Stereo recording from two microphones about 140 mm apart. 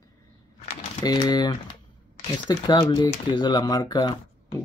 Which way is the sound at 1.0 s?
30° left (ahead or behind).